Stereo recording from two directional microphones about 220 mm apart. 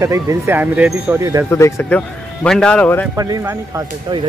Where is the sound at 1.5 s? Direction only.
15° left (ahead or behind).